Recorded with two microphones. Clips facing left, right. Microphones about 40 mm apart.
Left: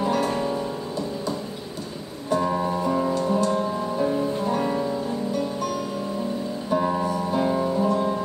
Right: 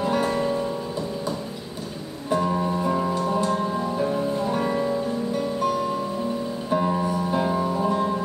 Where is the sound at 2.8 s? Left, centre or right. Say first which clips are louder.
Left 1 dB; centre.